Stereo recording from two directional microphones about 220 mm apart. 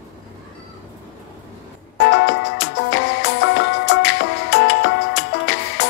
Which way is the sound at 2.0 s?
55° left (ahead or behind).